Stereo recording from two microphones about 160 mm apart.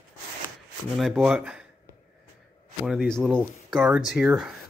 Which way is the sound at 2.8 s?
Centre (ahead or behind).